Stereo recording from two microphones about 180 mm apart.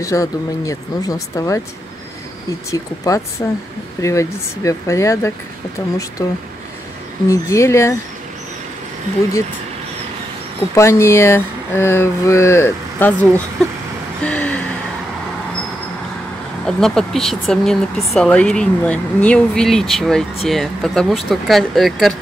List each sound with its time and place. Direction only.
0.0 s speech: 20° left (ahead or behind)
2.7 s speech: 20° left (ahead or behind)
10.7 s speech: 15° left (ahead or behind)
14.2 s a sound: 5° left (ahead or behind)
16.6 s speech: 5° left (ahead or behind)